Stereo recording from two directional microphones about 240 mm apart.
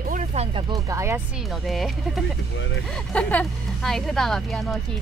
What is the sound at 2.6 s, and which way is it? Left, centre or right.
Speech, left.